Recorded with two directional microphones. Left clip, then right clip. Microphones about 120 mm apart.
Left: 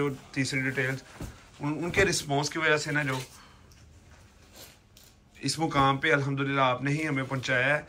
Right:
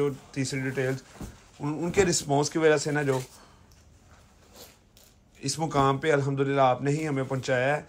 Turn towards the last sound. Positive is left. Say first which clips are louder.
# even
turn(degrees=-35)  # may be behind; listen again after turning